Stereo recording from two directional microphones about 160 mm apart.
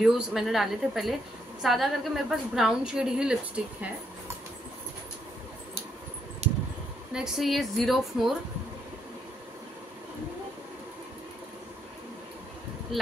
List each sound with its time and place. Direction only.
0.0 s a woman's voice: centre (ahead or behind)
6.4 s a sound: 40° right (ahead or behind)
7.2 s a woman's voice: centre (ahead or behind)